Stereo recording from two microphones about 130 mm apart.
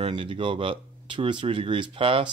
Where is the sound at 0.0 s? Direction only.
45° right (ahead or behind).